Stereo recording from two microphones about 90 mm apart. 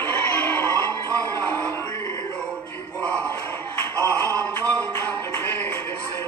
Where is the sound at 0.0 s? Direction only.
25° left (ahead or behind).